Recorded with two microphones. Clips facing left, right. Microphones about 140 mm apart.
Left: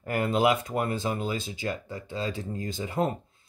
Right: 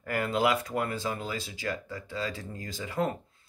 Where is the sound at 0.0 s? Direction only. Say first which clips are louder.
Left 3 dB; 25° left (ahead or behind).